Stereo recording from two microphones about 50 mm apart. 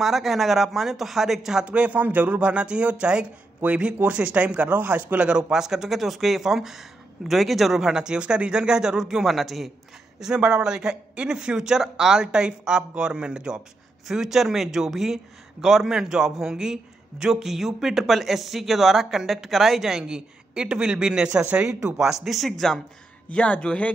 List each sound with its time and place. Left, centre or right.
0.0 s speech: centre
1.7 s speech: right
2.5 s a man's voice: right
5.5 s a man's voice: centre
10.2 s a man's voice: centre
14.0 s a man's voice: centre
23.3 s speech: left